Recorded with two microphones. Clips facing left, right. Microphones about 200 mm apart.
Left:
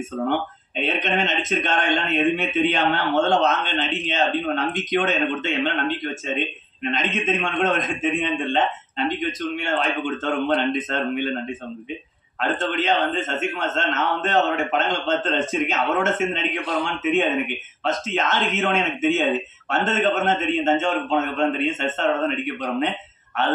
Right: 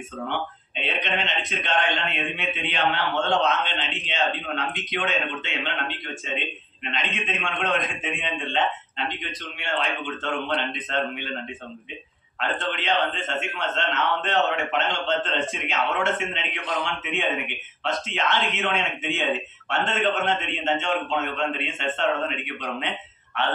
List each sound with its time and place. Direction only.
0.3 s speech: 45° left (ahead or behind)
12.7 s speech: 45° left (ahead or behind)